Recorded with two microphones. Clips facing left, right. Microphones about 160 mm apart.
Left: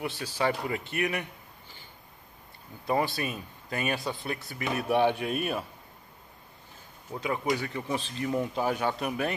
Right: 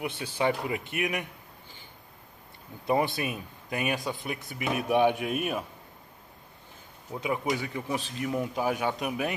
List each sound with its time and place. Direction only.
0.0 s speech: 20° right (ahead or behind)
3.2 s speech: 15° right (ahead or behind)
7.1 s speech: 15° right (ahead or behind)